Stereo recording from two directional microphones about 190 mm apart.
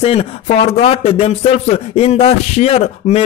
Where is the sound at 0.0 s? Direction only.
30° left (ahead or behind).